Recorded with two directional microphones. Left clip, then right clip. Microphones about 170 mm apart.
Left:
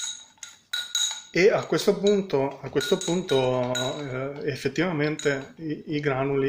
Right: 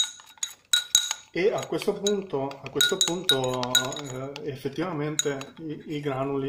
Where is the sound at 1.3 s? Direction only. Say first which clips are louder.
Left 5 dB; 20° left (ahead or behind).